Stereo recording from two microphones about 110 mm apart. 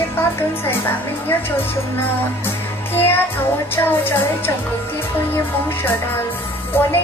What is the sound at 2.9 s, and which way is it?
Music, 20° left (ahead or behind).